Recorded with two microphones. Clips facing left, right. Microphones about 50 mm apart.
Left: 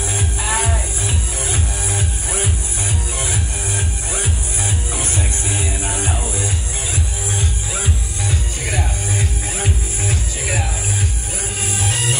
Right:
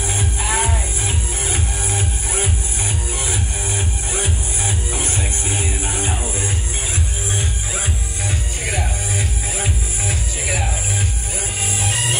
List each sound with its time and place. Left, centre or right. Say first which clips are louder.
0.2 s music: even; left
1.0 s music: even; right
4.9 s music: even; left
5.9 s music: left 1 dB; right
9.1 s music: left 1 dB; left